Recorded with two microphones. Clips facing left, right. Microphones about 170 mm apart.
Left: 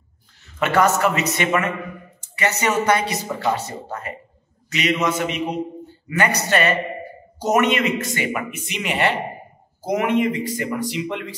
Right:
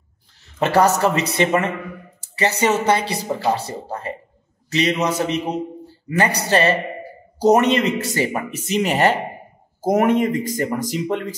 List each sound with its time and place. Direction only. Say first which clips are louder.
0.6 s a man's voice: right 2 dB; 35° right (ahead or behind)